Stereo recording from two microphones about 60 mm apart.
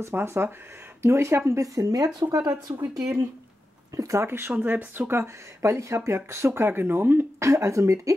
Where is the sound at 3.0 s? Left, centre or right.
Right.